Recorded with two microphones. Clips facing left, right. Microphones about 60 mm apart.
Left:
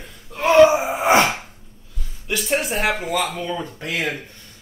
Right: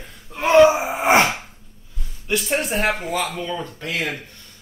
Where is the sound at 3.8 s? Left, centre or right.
Left.